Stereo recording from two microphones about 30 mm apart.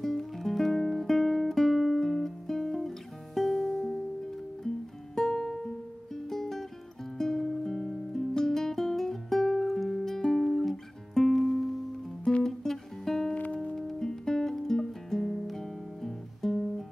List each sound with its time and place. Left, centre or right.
0.0 s guitar: centre
2.0 s music: centre
4.6 s guitar: centre
5.5 s music: centre
7.2 s guitar: centre
12.4 s music: centre
13.3 s music: left
13.7 s music: centre
14.6 s guitar: centre